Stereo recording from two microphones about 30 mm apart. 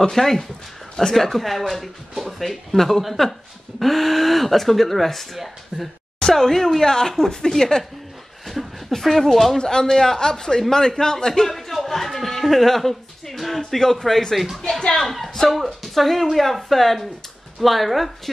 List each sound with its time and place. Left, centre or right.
0.1 s speech: centre
5.7 s speech: centre
6.2 s speech: centre
8.6 s a sound: centre
9.0 s speech: centre
9.6 s speech: left
14.3 s speech: centre
14.8 s speech: left
15.0 s speech: centre